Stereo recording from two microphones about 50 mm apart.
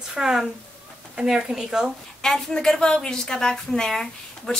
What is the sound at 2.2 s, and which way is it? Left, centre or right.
A woman's voice, centre.